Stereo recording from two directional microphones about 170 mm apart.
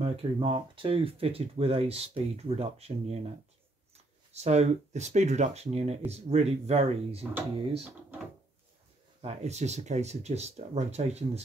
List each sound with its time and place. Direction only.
0.0 s speech: 35° right (ahead or behind)
9.2 s speech: 40° right (ahead or behind)